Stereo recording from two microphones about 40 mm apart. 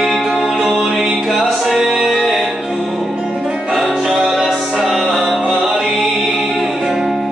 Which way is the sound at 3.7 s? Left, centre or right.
Centre.